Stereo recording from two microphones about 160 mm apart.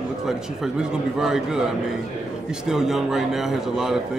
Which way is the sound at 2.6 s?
5° right (ahead or behind).